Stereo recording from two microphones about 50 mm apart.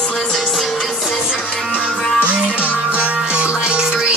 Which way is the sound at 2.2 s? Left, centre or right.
Right.